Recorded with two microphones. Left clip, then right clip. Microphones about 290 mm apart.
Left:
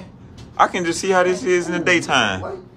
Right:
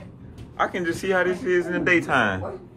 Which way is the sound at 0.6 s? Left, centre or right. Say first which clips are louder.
Left 7 dB; centre.